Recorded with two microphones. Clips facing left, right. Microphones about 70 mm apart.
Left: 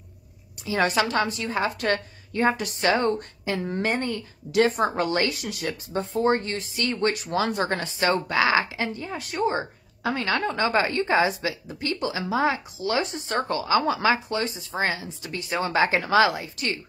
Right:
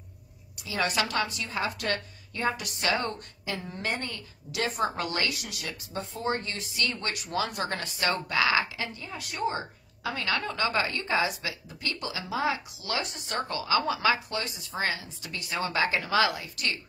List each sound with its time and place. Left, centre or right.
0.7 s a woman's voice: left
3.8 s a woman's voice: left